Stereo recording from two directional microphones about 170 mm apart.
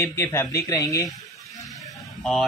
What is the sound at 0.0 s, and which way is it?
Speech, 15° left (ahead or behind).